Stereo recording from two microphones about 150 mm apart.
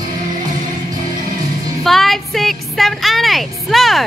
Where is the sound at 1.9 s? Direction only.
Centre (ahead or behind).